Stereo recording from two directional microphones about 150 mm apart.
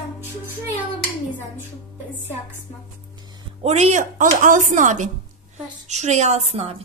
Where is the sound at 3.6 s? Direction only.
45° right (ahead or behind).